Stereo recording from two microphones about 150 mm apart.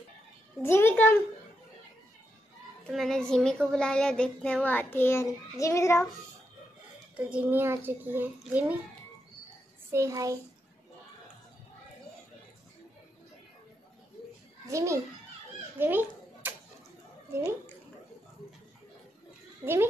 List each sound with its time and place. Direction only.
0.6 s a sound: 15° left (ahead or behind)
2.9 s speech: centre (ahead or behind); by 6.0 s 20° left (ahead or behind)
7.2 s a child's voice: 10° right (ahead or behind)
9.8 s a child's voice: 20° right (ahead or behind)
14.7 s a child's voice: 20° right (ahead or behind)
15.8 s children playing: 10° right (ahead or behind)
19.6 s a child's voice: 15° right (ahead or behind)